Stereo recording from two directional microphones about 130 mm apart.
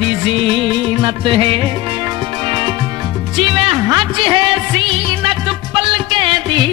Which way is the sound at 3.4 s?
45° right (ahead or behind).